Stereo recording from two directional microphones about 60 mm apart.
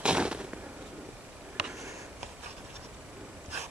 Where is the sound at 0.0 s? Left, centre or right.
Centre.